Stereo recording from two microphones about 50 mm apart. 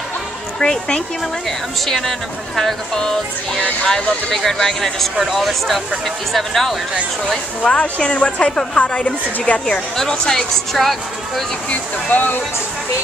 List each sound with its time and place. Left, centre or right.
0.6 s speech: centre
7.6 s a woman's voice: left; by 11.4 s centre
11.7 s speech: left